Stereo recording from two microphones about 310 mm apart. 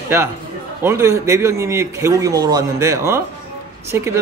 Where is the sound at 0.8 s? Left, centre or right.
Centre.